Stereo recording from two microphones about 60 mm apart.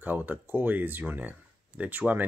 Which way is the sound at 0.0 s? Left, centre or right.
Right.